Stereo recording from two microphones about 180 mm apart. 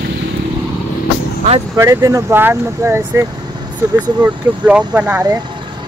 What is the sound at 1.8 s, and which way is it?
Speech, 15° right (ahead or behind).